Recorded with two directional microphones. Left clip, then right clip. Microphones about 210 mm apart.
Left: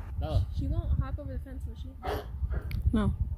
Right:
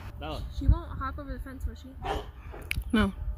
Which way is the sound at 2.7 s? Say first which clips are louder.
Right 5 dB; 5° left (ahead or behind).